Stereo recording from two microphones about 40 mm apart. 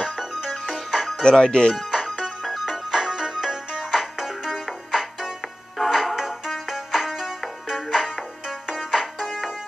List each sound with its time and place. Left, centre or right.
0.0 s music: centre
1.2 s speech: left
1.9 s music: centre